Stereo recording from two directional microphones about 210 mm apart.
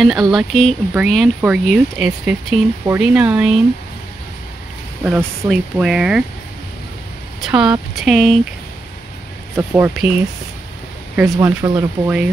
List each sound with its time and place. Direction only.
0.3 s speech: centre (ahead or behind)
5.0 s speech: 5° right (ahead or behind)
7.4 s speech: 5° right (ahead or behind)
9.6 s speech: 10° right (ahead or behind)